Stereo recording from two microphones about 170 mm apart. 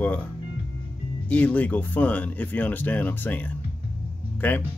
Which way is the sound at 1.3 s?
10° left (ahead or behind).